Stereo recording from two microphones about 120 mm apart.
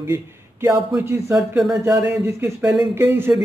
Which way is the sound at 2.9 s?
20° right (ahead or behind).